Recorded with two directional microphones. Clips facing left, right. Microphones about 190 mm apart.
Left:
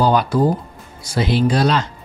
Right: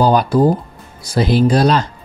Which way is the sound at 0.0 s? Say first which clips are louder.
Right 3 dB; 40° right (ahead or behind).